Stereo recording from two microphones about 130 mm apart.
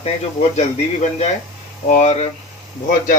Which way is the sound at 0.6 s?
60° left (ahead or behind).